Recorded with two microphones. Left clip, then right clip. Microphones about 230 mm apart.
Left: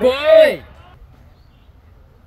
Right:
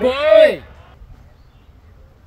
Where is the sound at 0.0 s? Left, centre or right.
Centre.